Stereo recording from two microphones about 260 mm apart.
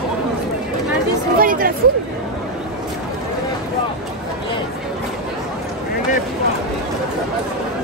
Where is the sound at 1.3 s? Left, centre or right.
Right.